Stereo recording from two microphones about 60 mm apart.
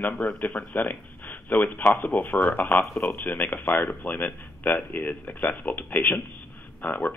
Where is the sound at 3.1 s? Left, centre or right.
Left.